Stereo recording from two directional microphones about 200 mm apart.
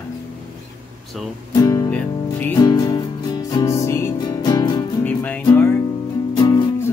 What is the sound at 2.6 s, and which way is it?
Music, 20° left (ahead or behind).